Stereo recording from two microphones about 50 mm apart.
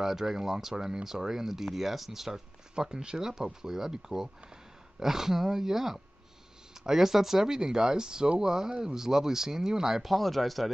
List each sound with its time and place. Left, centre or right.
0.0 s speech: centre